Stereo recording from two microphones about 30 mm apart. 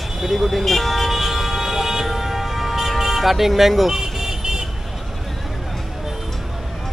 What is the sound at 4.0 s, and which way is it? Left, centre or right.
Vehicle, centre.